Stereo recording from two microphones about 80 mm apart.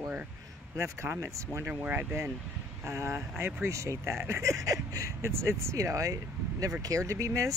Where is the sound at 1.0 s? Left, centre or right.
Right.